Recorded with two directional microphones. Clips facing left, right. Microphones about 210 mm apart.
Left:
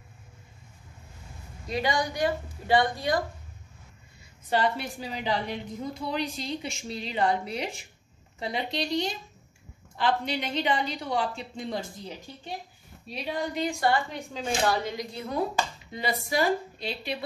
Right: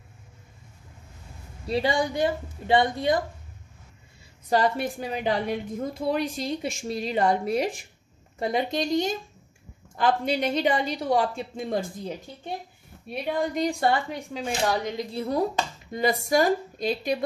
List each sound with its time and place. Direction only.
1.7 s a woman's voice: 30° right (ahead or behind)
4.5 s a woman's voice: 45° right (ahead or behind)
13.1 s a woman's voice: 55° right (ahead or behind)
13.7 s a woman's voice: 25° right (ahead or behind)
14.1 s speech: 15° right (ahead or behind)
15.1 s speech: 35° right (ahead or behind)
15.9 s a woman's voice: 45° right (ahead or behind)